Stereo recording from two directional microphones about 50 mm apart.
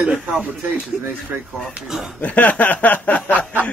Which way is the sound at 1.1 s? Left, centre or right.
Right.